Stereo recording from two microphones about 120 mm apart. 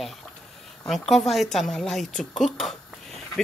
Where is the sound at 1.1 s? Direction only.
Centre (ahead or behind).